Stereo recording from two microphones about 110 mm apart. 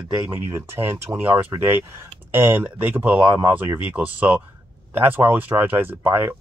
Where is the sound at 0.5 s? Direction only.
20° right (ahead or behind).